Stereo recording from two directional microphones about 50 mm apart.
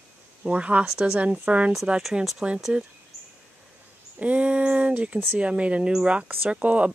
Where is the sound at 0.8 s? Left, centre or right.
Centre.